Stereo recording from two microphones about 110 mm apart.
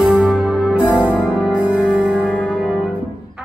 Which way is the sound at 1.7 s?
5° right (ahead or behind).